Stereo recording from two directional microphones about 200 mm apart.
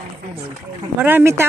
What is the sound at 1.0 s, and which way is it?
Speech, 10° right (ahead or behind).